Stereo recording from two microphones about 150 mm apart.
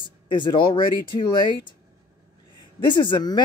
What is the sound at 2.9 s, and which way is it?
Speech, 30° left (ahead or behind).